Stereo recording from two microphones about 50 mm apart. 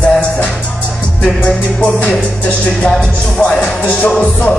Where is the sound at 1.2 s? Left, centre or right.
Left.